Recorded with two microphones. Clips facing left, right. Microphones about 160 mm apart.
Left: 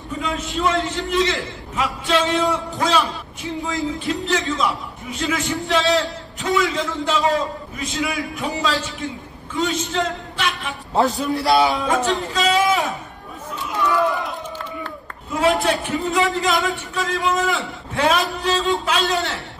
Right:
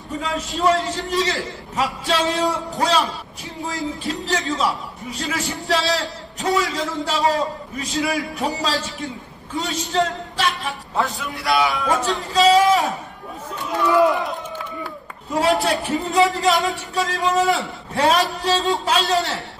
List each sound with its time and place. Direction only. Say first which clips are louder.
0.2 s a man's voice: right 1 dB; 40° right (ahead or behind)
11.0 s a man's voice: left 7 dB; 40° left (ahead or behind)
11.5 s speech: left 2 dB; 25° left (ahead or behind)
12.4 s a sound: right 6 dB; 35° right (ahead or behind)
15.3 s a man's voice: even; 35° right (ahead or behind)